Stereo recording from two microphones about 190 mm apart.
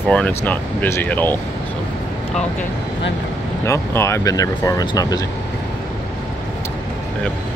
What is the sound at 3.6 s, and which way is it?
Speech, 15° left (ahead or behind).